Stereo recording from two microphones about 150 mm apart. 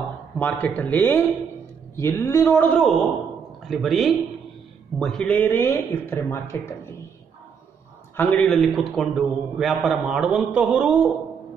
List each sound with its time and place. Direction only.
0.4 s speech: 10° left (ahead or behind)
3.6 s a man's voice: centre (ahead or behind); by 6.7 s 15° left (ahead or behind)
8.2 s a man's voice: 10° left (ahead or behind); by 11.1 s 5° right (ahead or behind)